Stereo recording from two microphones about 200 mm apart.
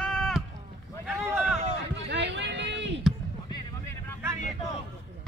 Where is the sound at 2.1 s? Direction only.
60° right (ahead or behind).